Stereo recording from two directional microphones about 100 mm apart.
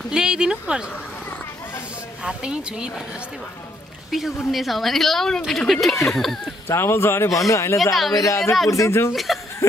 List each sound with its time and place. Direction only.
0.1 s speech: 5° right (ahead or behind)
2.2 s speech: 10° right (ahead or behind)
4.1 s speech: centre (ahead or behind)
6.7 s speech: 25° left (ahead or behind)
7.8 s speech: centre (ahead or behind)
8.1 s speech: 35° left (ahead or behind)
9.1 s speech: centre (ahead or behind)
9.6 s a sound: 30° left (ahead or behind)